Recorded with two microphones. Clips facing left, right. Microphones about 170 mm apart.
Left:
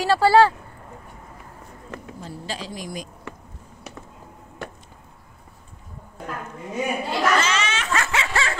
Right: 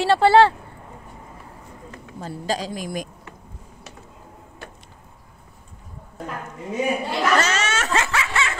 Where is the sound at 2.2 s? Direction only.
45° right (ahead or behind).